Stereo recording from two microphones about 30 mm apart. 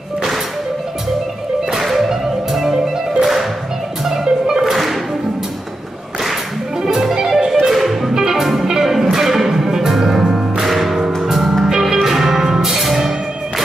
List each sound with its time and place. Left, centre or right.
2.0 s music: centre
6.8 s music: centre
7.7 s music: centre
8.1 s music: centre
10.7 s music: centre